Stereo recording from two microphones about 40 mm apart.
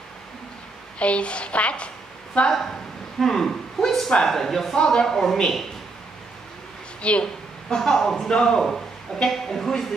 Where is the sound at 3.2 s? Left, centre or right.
Centre.